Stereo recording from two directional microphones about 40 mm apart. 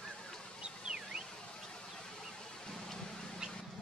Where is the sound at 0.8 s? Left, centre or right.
Centre.